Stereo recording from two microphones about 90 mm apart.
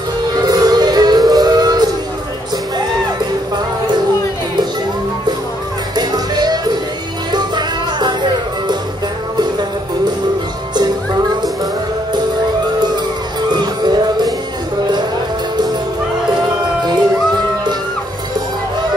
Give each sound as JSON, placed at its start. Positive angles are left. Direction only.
{"t": 0.5, "sound": "music", "side_deg": -45}
{"t": 5.9, "sound": "music", "side_deg": -50}
{"t": 13.5, "sound": "music", "side_deg": -55}